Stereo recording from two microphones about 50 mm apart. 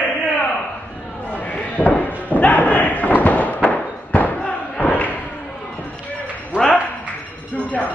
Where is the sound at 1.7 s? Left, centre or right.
Left.